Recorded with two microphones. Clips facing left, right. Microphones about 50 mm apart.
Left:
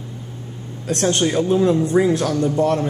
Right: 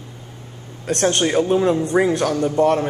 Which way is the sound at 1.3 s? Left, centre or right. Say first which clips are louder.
Left 1 dB; right.